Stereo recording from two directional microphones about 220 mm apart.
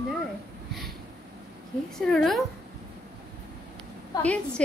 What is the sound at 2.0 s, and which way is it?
Speech, centre (ahead or behind).